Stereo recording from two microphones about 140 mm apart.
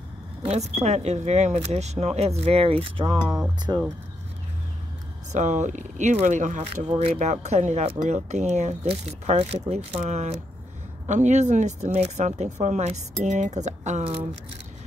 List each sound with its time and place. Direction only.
0.4 s speech: 50° right (ahead or behind)
3.7 s speech: 25° right (ahead or behind)
5.3 s speech: 55° right (ahead or behind)
6.9 s speech: 45° right (ahead or behind)